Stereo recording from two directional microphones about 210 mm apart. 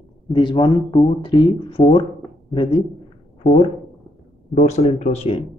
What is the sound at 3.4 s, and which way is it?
Speech, centre (ahead or behind).